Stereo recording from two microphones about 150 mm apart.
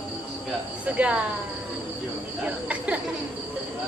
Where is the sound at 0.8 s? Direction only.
10° right (ahead or behind).